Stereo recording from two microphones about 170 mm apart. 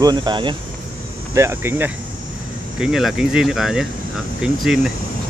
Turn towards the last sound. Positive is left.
turn(degrees=-5)  # may be behind; listen again after turning